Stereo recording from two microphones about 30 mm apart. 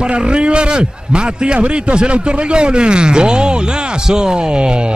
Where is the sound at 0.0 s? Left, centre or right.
Right.